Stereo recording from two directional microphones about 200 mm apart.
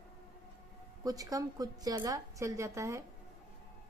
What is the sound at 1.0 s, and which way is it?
A woman's voice, 20° right (ahead or behind).